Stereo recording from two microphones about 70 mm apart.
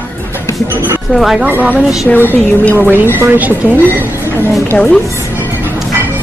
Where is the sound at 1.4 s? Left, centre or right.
Right.